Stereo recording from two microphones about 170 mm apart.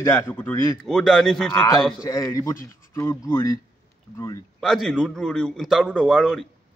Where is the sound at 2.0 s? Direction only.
20° left (ahead or behind).